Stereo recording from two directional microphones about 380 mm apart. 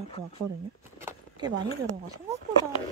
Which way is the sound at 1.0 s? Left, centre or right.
Centre.